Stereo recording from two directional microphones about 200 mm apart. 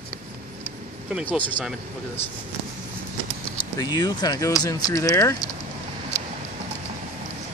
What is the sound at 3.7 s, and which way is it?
Speech, 20° left (ahead or behind).